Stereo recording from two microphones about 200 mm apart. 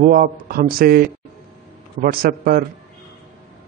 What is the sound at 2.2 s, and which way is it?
Speech, 50° right (ahead or behind).